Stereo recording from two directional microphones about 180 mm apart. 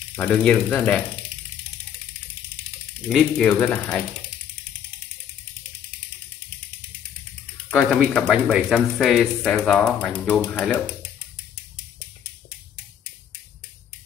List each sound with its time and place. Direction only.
0.1 s speech: 5° left (ahead or behind)
3.1 s speech: 5° left (ahead or behind)
7.7 s speech: 5° left (ahead or behind)